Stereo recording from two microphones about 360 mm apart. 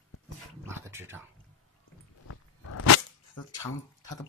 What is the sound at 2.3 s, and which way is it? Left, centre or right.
Dog, left.